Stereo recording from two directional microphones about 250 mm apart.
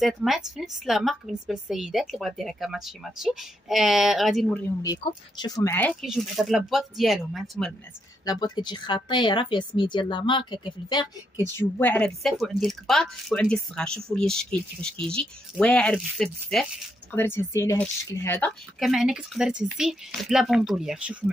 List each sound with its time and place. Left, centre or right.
0.0 s a woman's voice: centre
4.8 s a woman's voice: centre
8.3 s speech: centre
11.5 s a woman's voice: centre